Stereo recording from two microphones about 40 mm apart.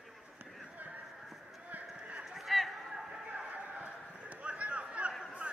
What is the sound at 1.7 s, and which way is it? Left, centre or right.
Clip-clop, right.